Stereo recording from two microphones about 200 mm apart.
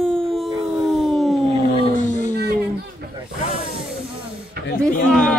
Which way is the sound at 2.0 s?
40° left (ahead or behind).